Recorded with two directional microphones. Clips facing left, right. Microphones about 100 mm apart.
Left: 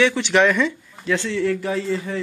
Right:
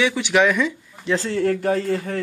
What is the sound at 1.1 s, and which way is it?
Speech, 40° right (ahead or behind).